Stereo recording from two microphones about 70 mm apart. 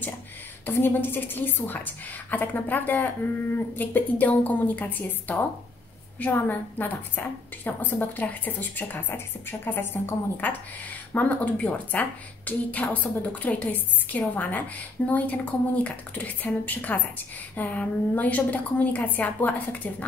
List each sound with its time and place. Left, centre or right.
0.7 s a woman's voice: left
6.4 s a woman's voice: left